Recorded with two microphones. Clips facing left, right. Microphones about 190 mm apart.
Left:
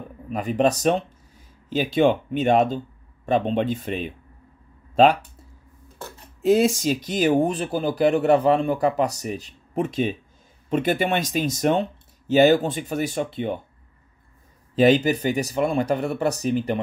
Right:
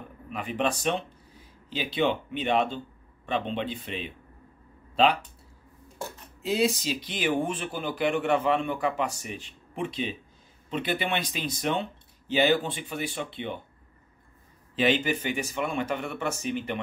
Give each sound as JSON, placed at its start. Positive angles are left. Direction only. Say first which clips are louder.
{"t": 0.3, "sound": "speech", "louder": "left 8 dB", "side_deg": 40}
{"t": 6.4, "sound": "speech", "louder": "left 8 dB", "side_deg": 45}
{"t": 14.8, "sound": "speech", "louder": "left 8 dB", "side_deg": 40}